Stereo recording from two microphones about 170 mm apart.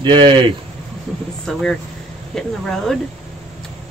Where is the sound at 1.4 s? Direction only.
5° left (ahead or behind).